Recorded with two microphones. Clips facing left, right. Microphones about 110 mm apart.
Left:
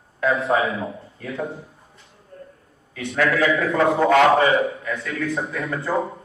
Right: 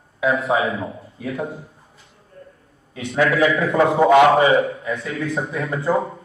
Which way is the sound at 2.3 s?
45° left (ahead or behind).